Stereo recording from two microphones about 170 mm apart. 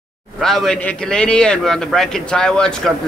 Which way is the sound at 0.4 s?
Centre (ahead or behind).